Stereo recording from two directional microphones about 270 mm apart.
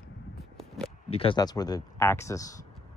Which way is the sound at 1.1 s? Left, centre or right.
Centre.